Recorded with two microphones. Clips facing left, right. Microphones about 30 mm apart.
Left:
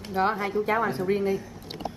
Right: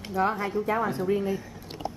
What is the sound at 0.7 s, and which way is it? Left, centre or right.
Speech, centre.